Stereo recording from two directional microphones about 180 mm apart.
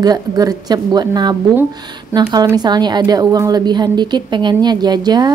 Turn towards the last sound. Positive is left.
turn(degrees=-25)  # may be behind; listen again after turning